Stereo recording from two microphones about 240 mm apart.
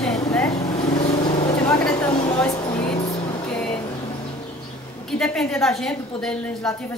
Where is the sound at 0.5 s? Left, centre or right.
Left.